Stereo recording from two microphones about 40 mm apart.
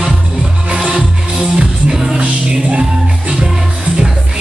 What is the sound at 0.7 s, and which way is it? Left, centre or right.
Music, centre.